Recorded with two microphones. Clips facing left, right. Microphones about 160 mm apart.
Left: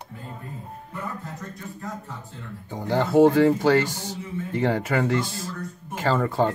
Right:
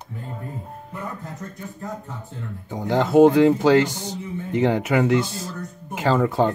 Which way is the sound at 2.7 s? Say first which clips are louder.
Right 3 dB; 20° right (ahead or behind).